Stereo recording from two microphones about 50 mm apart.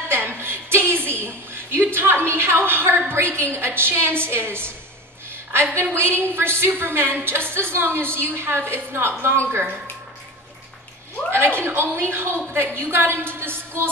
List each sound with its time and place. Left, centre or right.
0.1 s a sound: right
3.1 s a woman's voice: right
11.3 s a woman's voice: right